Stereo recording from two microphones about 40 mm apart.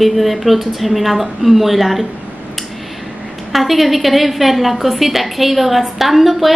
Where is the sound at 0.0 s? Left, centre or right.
Centre.